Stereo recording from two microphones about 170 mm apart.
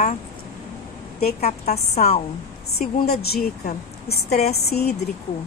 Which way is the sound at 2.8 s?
65° left (ahead or behind).